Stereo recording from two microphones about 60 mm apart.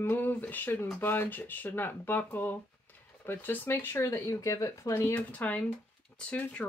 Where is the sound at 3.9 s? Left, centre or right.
Left.